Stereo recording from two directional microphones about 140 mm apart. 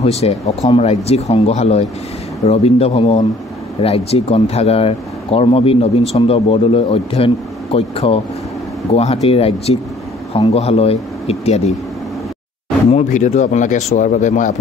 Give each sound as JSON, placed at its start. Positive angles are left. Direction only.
{"t": 0.0, "sound": "speech", "side_deg": 50}
{"t": 12.9, "sound": "speech", "side_deg": 55}